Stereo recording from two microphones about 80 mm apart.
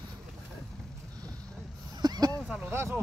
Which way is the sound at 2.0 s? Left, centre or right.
Right.